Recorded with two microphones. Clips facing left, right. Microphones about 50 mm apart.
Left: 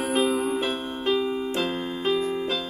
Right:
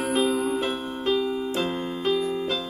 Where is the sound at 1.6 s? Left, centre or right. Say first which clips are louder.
Even; centre.